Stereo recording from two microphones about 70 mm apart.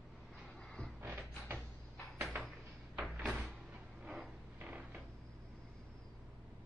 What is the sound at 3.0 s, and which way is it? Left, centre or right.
Door, centre.